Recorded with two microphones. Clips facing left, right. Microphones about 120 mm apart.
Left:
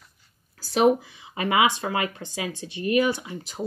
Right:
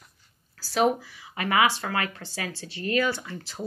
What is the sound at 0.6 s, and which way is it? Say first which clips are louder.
Speech: left 4 dB; 20° left (ahead or behind).